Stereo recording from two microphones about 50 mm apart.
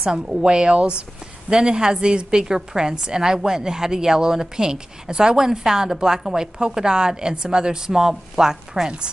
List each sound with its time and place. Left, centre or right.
0.1 s a woman's voice: centre